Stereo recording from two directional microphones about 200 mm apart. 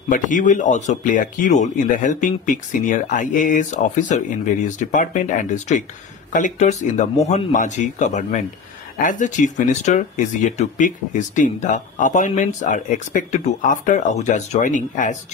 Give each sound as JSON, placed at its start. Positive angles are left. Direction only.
{"t": 0.1, "sound": "speech", "side_deg": 40}